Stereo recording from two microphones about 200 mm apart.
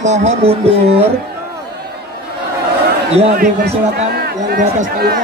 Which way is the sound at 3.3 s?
50° right (ahead or behind).